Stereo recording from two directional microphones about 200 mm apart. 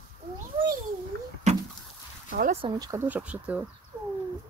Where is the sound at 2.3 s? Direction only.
40° right (ahead or behind).